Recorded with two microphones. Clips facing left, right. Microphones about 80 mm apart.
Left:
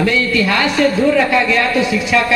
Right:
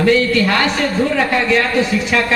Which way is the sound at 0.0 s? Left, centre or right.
Right.